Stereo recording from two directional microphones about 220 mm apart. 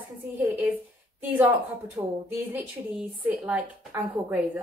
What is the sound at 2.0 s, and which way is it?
Speech, 20° right (ahead or behind).